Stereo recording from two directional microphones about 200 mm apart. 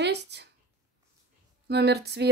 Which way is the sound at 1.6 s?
55° right (ahead or behind).